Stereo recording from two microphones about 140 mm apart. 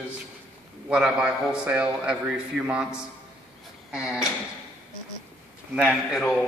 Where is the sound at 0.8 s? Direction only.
5° right (ahead or behind).